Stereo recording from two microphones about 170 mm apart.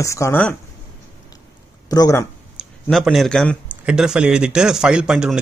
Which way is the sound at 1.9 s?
20° left (ahead or behind).